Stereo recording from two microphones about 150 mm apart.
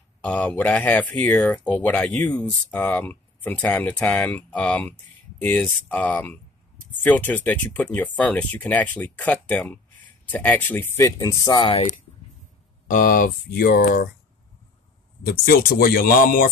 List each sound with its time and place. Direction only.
0.2 s speech: 10° left (ahead or behind); by 11.6 s 25° left (ahead or behind)
11.6 s speech: 40° left (ahead or behind)
12.8 s speech: 65° left (ahead or behind)
15.2 s speech: 75° left (ahead or behind)